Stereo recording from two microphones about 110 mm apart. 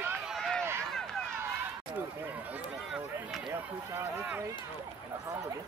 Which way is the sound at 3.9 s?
15° right (ahead or behind).